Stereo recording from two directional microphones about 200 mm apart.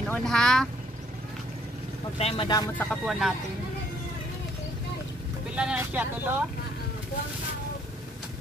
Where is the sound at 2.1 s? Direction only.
30° left (ahead or behind).